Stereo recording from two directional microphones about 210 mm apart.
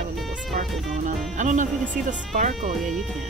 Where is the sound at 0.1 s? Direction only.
Centre (ahead or behind).